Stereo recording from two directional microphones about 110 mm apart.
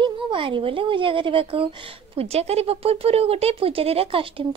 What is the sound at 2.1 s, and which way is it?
Speech, 70° right (ahead or behind).